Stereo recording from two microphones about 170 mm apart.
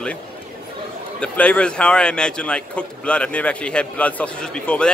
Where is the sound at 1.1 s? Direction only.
5° left (ahead or behind).